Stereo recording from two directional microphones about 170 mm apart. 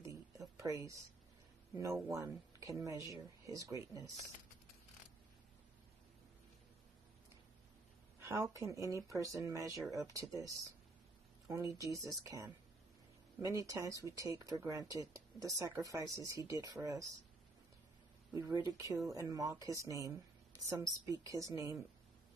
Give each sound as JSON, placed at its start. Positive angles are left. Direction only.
{"t": 0.0, "sound": "a sound", "side_deg": -20}
{"t": 2.0, "sound": "speech", "side_deg": -20}
{"t": 8.2, "sound": "speech", "side_deg": -15}
{"t": 18.3, "sound": "speech", "side_deg": -20}